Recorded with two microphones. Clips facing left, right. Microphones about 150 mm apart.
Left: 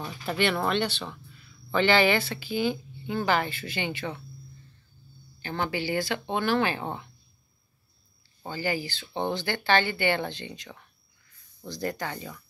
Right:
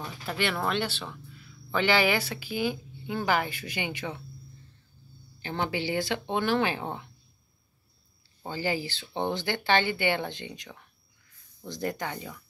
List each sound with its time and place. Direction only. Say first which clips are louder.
0.0 s speech: left 4 dB; centre (ahead or behind)
5.4 s speech: even; 20° right (ahead or behind)
8.5 s speech: even; 25° right (ahead or behind)